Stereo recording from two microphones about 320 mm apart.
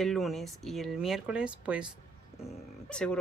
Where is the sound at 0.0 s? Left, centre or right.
Centre.